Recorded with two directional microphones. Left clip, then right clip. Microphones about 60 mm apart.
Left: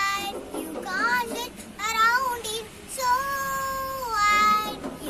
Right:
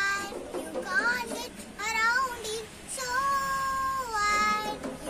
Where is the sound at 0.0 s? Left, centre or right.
Right.